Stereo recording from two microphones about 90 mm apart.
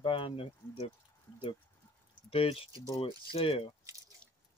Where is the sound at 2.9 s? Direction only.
80° left.